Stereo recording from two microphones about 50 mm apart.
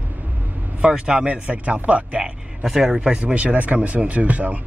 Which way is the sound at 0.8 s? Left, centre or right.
Centre.